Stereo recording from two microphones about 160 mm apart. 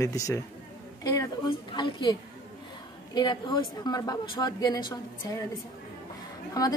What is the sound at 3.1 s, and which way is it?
A woman's voice, 25° left (ahead or behind).